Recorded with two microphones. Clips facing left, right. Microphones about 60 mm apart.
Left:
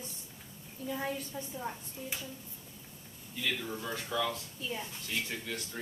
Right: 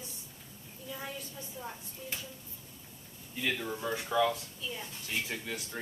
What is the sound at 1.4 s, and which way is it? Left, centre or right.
Speech, centre.